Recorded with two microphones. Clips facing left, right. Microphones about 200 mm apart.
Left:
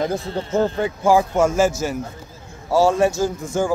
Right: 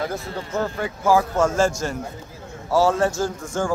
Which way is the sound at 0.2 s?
30° left (ahead or behind).